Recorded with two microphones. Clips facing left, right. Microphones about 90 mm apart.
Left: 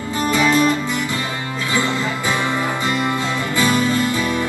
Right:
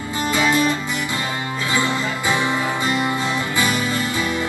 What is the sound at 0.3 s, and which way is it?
Music, 20° right (ahead or behind).